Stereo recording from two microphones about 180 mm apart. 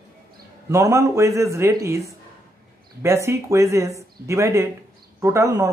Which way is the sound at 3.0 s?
15° right (ahead or behind).